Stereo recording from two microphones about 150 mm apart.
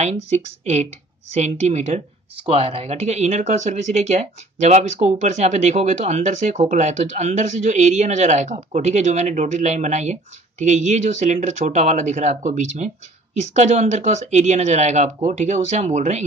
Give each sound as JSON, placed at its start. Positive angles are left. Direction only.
{"t": 1.4, "sound": "speech", "side_deg": -50}